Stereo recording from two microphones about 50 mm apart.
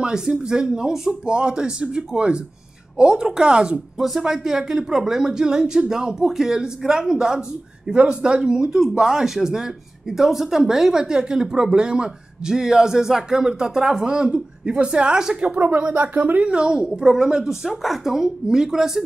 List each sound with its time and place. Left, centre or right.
0.0 s speech: centre
15.4 s a woman's voice: right; by 19.0 s centre